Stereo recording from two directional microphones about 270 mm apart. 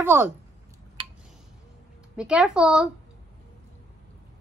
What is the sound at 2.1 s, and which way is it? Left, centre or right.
Speech, centre.